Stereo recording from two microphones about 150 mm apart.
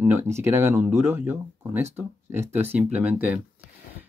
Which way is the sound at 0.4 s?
15° right (ahead or behind).